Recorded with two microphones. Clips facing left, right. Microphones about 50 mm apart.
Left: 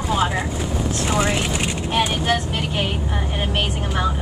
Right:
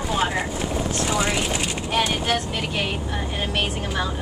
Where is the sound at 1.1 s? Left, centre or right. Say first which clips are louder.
Left 3 dB; left.